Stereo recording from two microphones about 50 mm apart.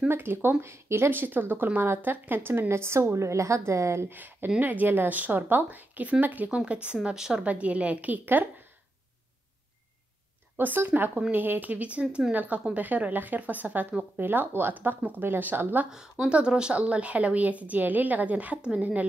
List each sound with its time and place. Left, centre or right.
0.1 s speech: right
1.1 s speech: right
2.7 s a woman's voice: right
4.1 s speech: right
6.5 s a woman's voice: right
7.4 s a woman's voice: right
10.6 s a woman's voice: right
15.9 s a woman's voice: centre